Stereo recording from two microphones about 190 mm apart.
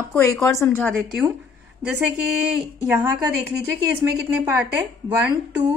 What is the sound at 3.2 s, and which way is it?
Speech, 20° right (ahead or behind).